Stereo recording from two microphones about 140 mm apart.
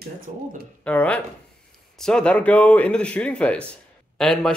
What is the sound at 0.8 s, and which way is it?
A man's voice, 10° left (ahead or behind).